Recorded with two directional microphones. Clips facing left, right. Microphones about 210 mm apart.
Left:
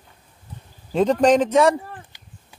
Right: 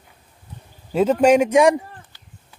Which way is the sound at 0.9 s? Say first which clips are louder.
Right 1 dB; 5° right (ahead or behind).